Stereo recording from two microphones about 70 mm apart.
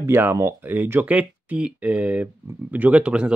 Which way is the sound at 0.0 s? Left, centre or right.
Right.